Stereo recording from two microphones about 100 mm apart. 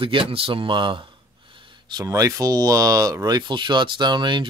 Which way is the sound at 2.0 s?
35° right (ahead or behind).